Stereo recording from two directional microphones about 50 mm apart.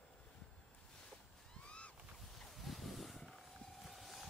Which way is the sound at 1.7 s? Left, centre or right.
Left.